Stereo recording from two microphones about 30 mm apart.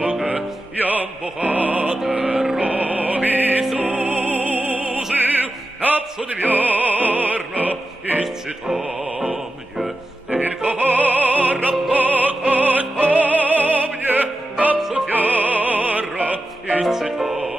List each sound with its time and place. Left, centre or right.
0.7 s music: right
2.1 s music: right
2.6 s music: right
3.8 s music: right
6.4 s opera: right
10.6 s music: right
14.8 s music: centre
15.0 s music: right
16.9 s music: centre